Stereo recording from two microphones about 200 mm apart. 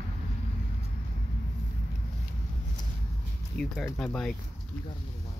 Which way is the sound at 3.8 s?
5° left (ahead or behind).